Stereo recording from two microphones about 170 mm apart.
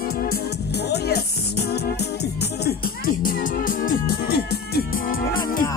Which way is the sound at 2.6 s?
60° left (ahead or behind).